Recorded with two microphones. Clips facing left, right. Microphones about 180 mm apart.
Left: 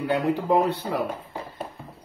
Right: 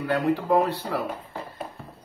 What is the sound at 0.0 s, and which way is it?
Speech, 20° left (ahead or behind).